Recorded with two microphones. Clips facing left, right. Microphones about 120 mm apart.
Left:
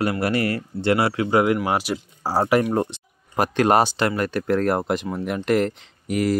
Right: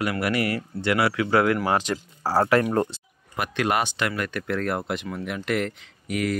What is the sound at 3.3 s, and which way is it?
Speech, 40° left (ahead or behind).